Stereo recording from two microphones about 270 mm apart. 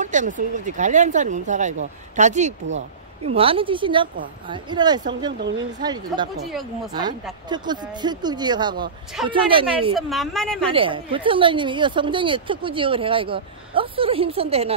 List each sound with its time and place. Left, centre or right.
0.0 s speech: right
6.3 s a woman's voice: centre
6.9 s speech: centre
9.9 s a woman's voice: centre
10.7 s speech: centre